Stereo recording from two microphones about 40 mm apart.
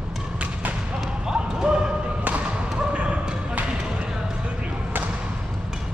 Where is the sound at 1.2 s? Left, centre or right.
Centre.